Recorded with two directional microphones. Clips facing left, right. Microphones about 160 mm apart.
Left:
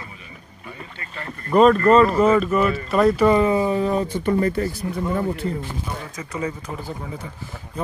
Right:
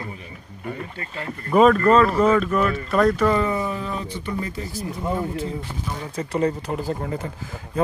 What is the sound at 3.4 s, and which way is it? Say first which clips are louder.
Speech: left 6 dB; 25° left (ahead or behind).